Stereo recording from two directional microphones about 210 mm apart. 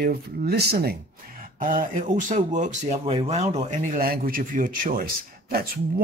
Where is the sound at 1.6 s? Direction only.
40° right (ahead or behind).